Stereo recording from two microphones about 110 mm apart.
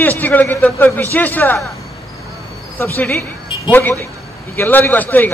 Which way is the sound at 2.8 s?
20° left (ahead or behind).